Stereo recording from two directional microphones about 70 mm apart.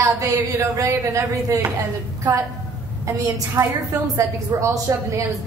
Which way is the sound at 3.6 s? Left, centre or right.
Right.